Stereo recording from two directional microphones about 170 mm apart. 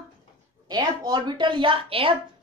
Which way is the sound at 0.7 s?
25° right (ahead or behind).